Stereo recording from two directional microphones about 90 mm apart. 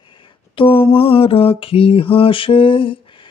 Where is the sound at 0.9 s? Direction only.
90° left.